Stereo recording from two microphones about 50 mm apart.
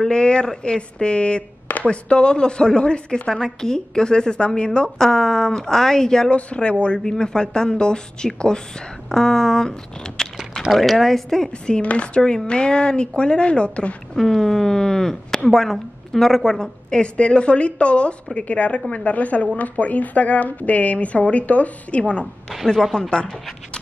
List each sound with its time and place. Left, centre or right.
0.0 s a woman's voice: centre
3.3 s speech: centre
6.3 s a woman's voice: left
10.7 s speech: centre; by 12.2 s left
12.2 s a woman's voice: centre
14.1 s a woman's voice: centre; by 22.0 s left
22.7 s speech: centre